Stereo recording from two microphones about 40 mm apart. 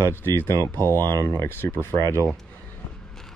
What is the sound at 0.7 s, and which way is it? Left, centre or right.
Speech, left.